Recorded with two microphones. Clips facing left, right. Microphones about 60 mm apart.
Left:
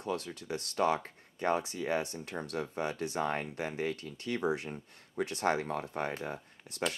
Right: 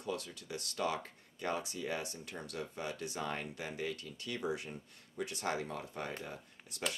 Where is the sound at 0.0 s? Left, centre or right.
Left.